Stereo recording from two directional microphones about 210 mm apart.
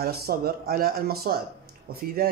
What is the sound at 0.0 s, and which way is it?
Speech, 45° right (ahead or behind).